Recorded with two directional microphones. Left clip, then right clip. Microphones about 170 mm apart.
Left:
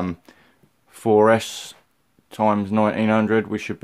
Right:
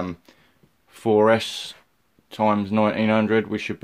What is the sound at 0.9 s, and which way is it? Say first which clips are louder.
Speech: left 2 dB; 10° left (ahead or behind).